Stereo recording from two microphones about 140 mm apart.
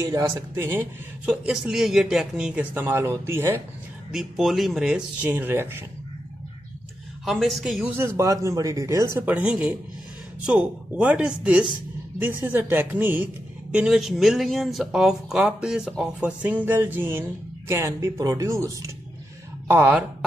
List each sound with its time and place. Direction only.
0.0 s speech: 25° right (ahead or behind)
1.3 s speech: 5° right (ahead or behind)
4.1 s a woman's voice: centre (ahead or behind)
7.2 s a woman's voice: centre (ahead or behind)
7.9 s a woman's voice: 15° right (ahead or behind)